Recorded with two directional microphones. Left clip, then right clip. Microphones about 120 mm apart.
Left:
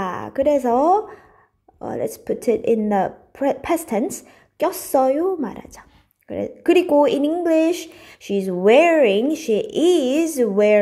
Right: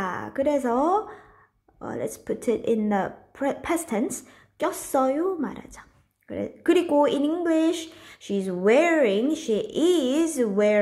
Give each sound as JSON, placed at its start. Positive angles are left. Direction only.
{"t": 0.0, "sound": "a woman's voice", "side_deg": 25}